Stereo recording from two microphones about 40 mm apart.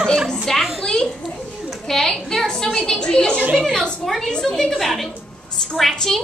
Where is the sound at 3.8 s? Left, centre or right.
Centre.